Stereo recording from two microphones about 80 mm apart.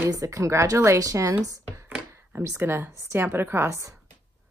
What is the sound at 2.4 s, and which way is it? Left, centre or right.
A woman's voice, right.